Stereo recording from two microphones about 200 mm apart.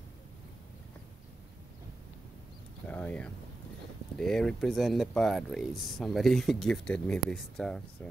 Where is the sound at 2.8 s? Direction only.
5° left (ahead or behind).